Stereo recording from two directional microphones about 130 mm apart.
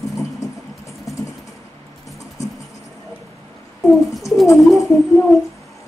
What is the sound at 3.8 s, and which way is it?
Speech, centre (ahead or behind).